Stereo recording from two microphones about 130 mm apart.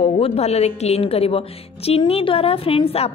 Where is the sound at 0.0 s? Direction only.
45° left (ahead or behind).